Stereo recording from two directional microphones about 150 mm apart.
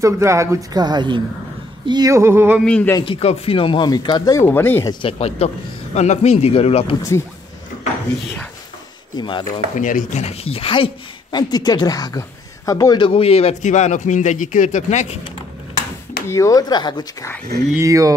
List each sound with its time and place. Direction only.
0.0 s speech: 20° right (ahead or behind)
2.6 s a man's voice: 5° left (ahead or behind)
3.0 s speech: 40° left (ahead or behind); by 4.5 s 25° left (ahead or behind)
4.5 s speech: 15° left (ahead or behind)
4.8 s speech: 40° left (ahead or behind)
7.0 s speech: 20° left (ahead or behind)
9.1 s speech: 30° left (ahead or behind)
9.8 s speech: 60° left (ahead or behind); by 10.9 s 40° left (ahead or behind)
11.3 s speech: 30° left (ahead or behind); by 15.1 s 50° left (ahead or behind)
16.3 s speech: 20° left (ahead or behind)
17.7 s speech: 20° right (ahead or behind)